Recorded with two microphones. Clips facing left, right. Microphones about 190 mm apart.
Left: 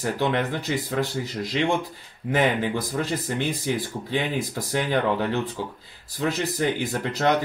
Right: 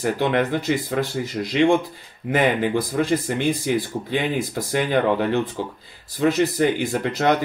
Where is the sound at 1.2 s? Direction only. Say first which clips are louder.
Right 6 dB; 15° right (ahead or behind).